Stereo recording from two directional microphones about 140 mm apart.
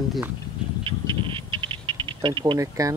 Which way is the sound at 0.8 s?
40° right (ahead or behind).